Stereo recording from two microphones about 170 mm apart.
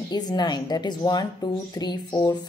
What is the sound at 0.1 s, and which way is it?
A woman's voice, 25° left (ahead or behind).